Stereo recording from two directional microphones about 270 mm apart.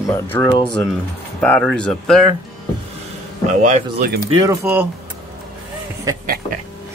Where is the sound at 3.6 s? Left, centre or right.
Right.